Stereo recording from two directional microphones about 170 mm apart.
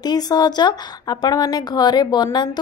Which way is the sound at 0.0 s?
25° left (ahead or behind).